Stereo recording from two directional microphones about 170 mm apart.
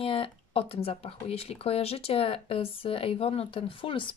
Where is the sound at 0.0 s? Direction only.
30° left (ahead or behind).